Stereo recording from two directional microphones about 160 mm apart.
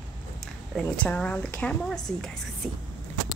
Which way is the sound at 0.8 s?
5° left (ahead or behind).